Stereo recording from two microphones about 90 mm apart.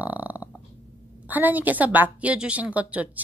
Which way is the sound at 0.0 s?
15° right (ahead or behind).